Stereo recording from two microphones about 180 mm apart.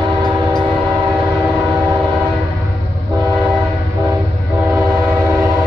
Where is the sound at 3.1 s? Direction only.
15° right (ahead or behind).